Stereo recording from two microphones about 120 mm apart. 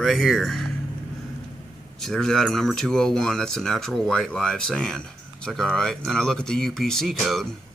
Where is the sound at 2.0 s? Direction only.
5° left (ahead or behind).